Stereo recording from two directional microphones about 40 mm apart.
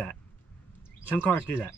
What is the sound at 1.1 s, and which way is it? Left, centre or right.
Speech, left.